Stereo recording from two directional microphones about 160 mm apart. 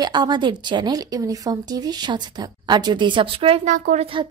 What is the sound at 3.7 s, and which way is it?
Speech, 50° right (ahead or behind).